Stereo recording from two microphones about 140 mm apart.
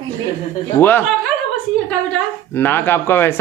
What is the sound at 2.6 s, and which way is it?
Speech, 15° left (ahead or behind).